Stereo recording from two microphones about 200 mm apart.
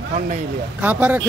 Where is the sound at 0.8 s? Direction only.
10° right (ahead or behind).